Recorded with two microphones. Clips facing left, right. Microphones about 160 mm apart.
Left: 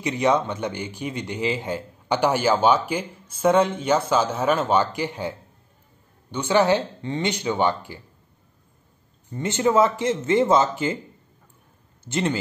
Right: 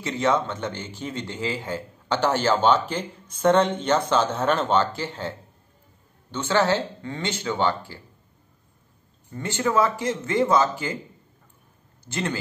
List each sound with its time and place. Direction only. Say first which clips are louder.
0.0 s speech: left 2 dB; 15° left (ahead or behind)
6.3 s speech: left 3 dB; 15° left (ahead or behind)
9.3 s speech: left 3 dB; 20° left (ahead or behind)
12.0 s speech: left 4 dB; 20° left (ahead or behind)